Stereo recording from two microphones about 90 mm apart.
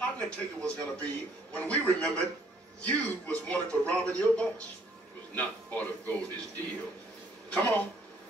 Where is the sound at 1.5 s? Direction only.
15° left (ahead or behind).